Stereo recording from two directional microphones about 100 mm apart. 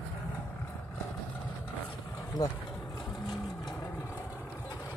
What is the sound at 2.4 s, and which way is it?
Speech, 40° left (ahead or behind).